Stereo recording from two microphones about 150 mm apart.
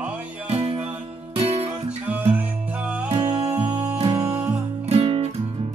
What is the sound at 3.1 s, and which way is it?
Music, 45° right (ahead or behind).